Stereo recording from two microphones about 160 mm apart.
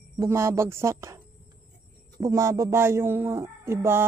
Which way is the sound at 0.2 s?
15° right (ahead or behind).